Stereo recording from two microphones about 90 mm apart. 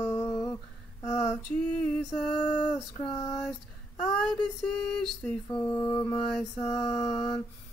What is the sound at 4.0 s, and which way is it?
Mantra, 5° left (ahead or behind).